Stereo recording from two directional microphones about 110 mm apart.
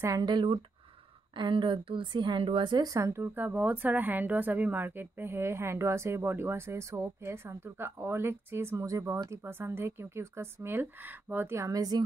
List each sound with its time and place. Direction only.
0.0 s a woman's voice: 35° right (ahead or behind)